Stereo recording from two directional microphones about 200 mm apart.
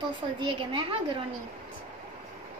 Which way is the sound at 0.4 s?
25° right (ahead or behind).